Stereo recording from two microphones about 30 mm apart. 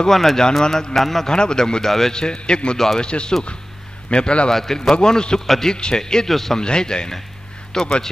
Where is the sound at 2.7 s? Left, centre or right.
Centre.